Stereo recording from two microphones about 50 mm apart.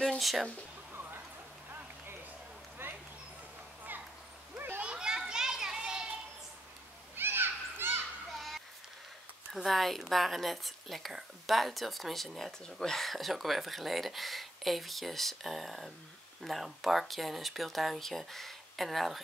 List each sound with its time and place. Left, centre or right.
0.2 s speech: centre
2.8 s a sound: right
4.9 s children playing: centre
7.2 s children playing: right
8.3 s a sound: centre
9.5 s speech: centre